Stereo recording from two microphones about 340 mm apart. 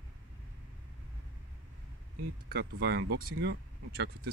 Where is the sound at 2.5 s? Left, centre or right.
Right.